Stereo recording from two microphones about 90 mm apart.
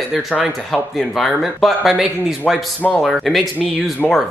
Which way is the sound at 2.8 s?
20° left (ahead or behind).